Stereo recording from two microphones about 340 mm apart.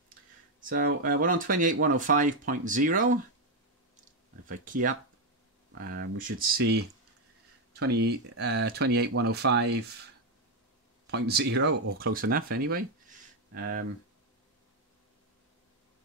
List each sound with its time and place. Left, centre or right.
0.6 s speech: right
4.5 s speech: right
7.8 s speech: right
11.1 s speech: right